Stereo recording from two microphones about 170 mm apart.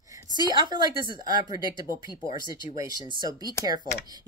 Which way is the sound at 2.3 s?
25° right (ahead or behind).